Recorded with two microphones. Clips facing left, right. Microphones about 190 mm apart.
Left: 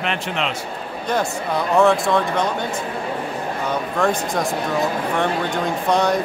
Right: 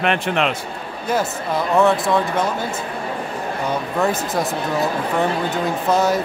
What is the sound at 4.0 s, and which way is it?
Speech, 5° right (ahead or behind).